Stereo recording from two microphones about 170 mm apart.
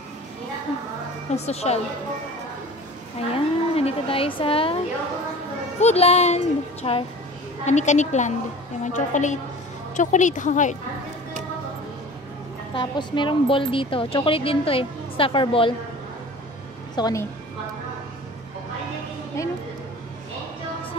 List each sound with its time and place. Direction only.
1.3 s a woman's voice: 40° left (ahead or behind)
3.2 s speech: 35° left (ahead or behind)
5.8 s a woman's voice: 40° left (ahead or behind)
12.7 s a woman's voice: 30° left (ahead or behind)
16.9 s a woman's voice: 20° left (ahead or behind)